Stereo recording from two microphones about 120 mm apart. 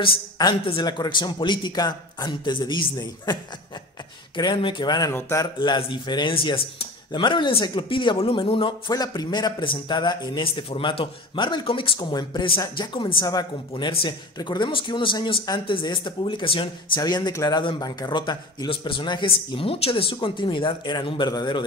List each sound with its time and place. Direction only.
0.4 s speech: 35° left (ahead or behind)
4.4 s speech: 40° left (ahead or behind)
17.3 s speech: 25° left (ahead or behind)